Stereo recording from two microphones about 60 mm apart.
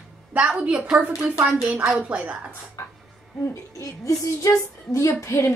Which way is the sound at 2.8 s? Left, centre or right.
Left.